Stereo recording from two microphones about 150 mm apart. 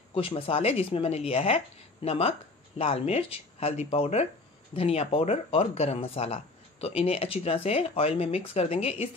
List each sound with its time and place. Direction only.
0.1 s speech: 40° left (ahead or behind)